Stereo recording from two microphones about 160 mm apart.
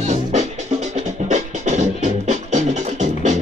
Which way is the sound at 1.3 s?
45° right (ahead or behind).